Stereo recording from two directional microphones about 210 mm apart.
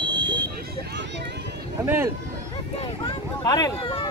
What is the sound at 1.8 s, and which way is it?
Speech, 10° right (ahead or behind).